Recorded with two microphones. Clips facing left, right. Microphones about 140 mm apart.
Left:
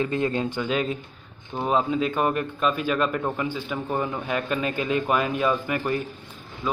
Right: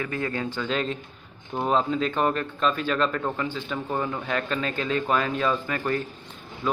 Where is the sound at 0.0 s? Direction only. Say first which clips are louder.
Left 4 dB; 20° left (ahead or behind).